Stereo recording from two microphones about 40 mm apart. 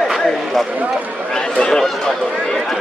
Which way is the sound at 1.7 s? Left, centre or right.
Centre.